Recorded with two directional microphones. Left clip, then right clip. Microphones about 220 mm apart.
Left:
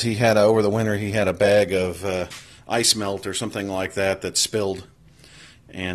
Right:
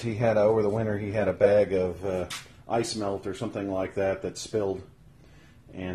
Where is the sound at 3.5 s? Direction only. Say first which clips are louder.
Left 1 dB; 20° left (ahead or behind).